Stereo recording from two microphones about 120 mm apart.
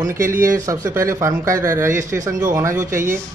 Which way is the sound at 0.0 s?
25° right (ahead or behind).